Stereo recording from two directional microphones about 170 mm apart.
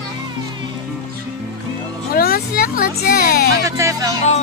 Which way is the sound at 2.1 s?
60° left (ahead or behind).